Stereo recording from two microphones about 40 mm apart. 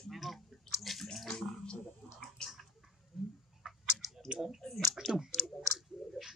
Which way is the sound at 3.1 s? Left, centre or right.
Centre.